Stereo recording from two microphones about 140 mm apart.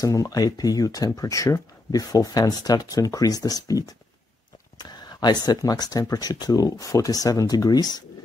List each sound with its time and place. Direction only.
0.0 s speech: 25° left (ahead or behind)